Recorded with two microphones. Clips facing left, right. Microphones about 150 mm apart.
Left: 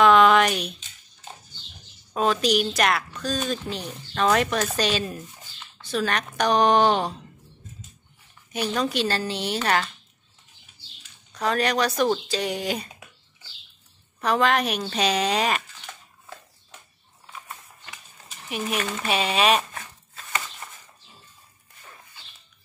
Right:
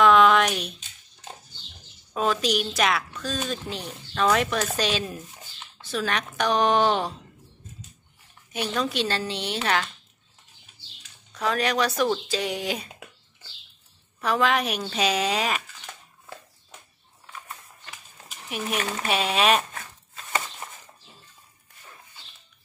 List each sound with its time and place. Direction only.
0.0 s a sound: centre (ahead or behind)
2.1 s a woman's voice: centre (ahead or behind)
8.8 s a woman's voice: centre (ahead or behind)
11.3 s a woman's voice: centre (ahead or behind)
14.2 s a woman's voice: centre (ahead or behind)
18.5 s a woman's voice: centre (ahead or behind)